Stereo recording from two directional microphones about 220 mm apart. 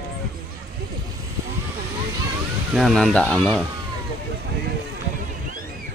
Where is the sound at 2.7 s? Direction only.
Centre (ahead or behind).